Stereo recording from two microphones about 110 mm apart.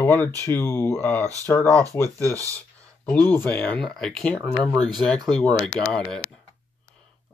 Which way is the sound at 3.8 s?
5° left (ahead or behind).